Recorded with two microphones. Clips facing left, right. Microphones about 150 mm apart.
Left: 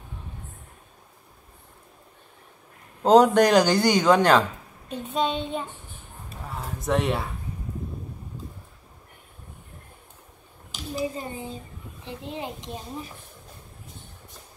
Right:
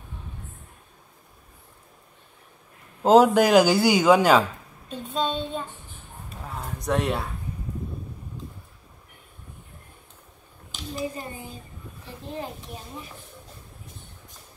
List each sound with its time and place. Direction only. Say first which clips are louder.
3.0 s speech: even; 5° right (ahead or behind)
4.8 s child singing: left 1 dB; 15° left (ahead or behind)
6.4 s a sound: even; centre (ahead or behind)
11.1 s a child's voice: left 3 dB; 25° left (ahead or behind)
12.0 s child singing: left 1 dB; 20° left (ahead or behind)